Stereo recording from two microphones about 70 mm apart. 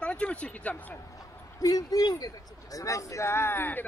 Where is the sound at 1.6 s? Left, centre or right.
Left.